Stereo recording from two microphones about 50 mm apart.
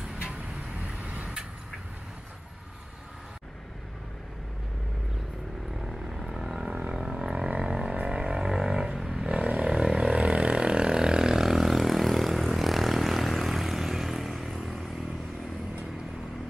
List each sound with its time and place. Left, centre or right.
0.0 s vehicle: centre
5.9 s vehicle: centre
6.6 s a sound: centre
7.4 s a sound: right
8.1 s music: centre
8.9 s roaring cats: centre
9.2 s vehicle: centre